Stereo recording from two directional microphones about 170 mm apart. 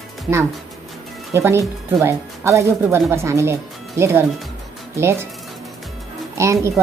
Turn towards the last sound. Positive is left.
turn(degrees=-15)  # may be behind; listen again after turning